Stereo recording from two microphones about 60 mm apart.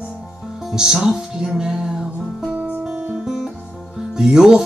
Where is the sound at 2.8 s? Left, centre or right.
Centre.